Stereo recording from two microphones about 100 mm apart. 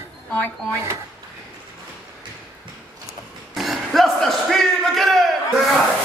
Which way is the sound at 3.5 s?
Centre (ahead or behind).